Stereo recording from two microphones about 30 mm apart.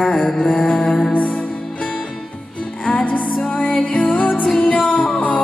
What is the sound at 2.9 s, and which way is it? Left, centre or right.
Music, left.